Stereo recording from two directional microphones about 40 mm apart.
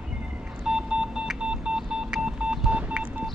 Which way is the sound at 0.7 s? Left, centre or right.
Centre.